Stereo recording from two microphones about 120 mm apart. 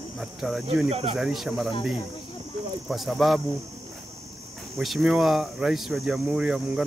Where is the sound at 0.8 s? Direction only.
60° right (ahead or behind).